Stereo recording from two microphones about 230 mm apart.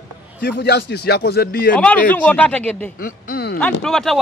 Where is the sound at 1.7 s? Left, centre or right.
Centre.